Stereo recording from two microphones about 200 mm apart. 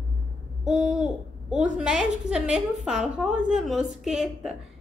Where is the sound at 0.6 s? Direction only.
5° right (ahead or behind).